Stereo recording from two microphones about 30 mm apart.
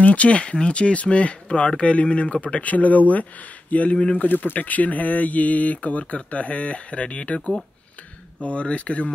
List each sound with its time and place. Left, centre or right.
0.0 s speech: left
0.4 s speech: left
3.9 s speech: left
4.4 s speech: left